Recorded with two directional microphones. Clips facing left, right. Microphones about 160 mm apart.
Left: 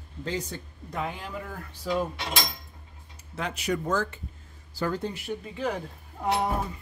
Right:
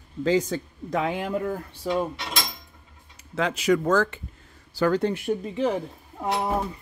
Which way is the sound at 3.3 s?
90° right.